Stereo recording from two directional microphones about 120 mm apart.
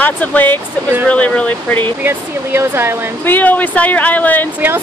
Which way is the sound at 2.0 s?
20° right (ahead or behind).